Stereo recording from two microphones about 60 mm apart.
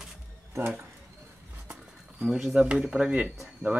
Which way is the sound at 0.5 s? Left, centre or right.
Right.